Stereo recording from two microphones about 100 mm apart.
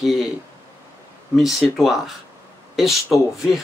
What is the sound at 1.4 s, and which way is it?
Speech, centre (ahead or behind).